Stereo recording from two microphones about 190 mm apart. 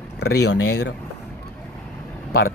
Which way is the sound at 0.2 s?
60° left (ahead or behind).